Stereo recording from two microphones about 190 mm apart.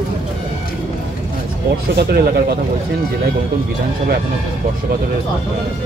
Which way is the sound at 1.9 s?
55° right (ahead or behind).